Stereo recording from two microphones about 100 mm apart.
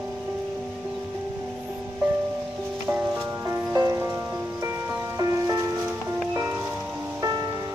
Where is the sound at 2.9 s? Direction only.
15° right (ahead or behind).